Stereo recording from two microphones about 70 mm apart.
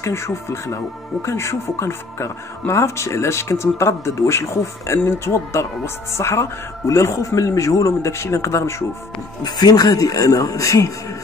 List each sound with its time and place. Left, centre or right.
0.0 s a man's voice: left
9.4 s speech: left